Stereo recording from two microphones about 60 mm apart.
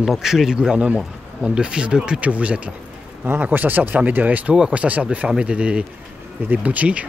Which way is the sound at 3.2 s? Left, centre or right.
Right.